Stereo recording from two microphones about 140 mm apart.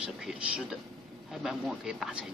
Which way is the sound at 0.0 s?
5° right (ahead or behind).